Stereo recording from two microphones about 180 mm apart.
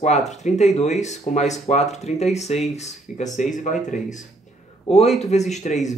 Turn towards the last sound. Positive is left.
turn(degrees=40)  # may be behind; listen again after turning